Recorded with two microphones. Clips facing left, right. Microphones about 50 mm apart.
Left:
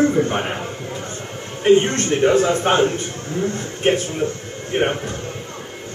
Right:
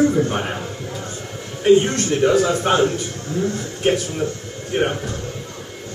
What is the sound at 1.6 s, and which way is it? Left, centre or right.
A man's voice, left.